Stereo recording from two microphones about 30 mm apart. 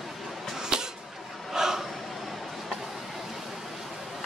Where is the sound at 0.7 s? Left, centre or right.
Right.